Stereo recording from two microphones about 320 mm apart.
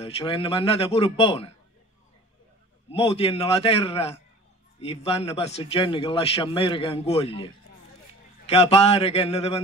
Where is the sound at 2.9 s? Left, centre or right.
Centre.